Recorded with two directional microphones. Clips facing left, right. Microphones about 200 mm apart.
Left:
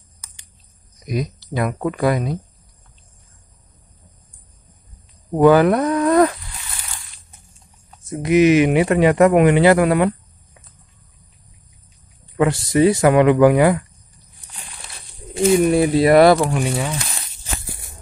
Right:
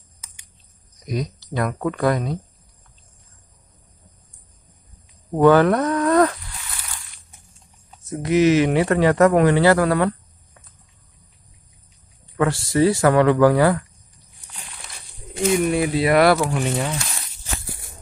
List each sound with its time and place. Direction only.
1.0 s speech: 10° left (ahead or behind)
5.3 s speech: 10° left (ahead or behind)
8.0 s speech: 15° left (ahead or behind)
12.4 s speech: 20° left (ahead or behind)
15.7 s speech: 40° left (ahead or behind)
16.3 s speech: 15° left (ahead or behind)